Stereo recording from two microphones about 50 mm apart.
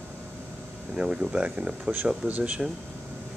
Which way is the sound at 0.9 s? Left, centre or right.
Centre.